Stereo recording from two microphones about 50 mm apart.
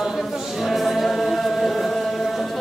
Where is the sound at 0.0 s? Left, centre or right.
Centre.